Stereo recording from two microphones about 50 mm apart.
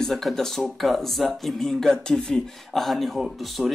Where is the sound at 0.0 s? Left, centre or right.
Centre.